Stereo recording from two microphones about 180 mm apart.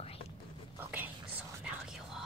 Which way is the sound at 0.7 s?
10° right (ahead or behind).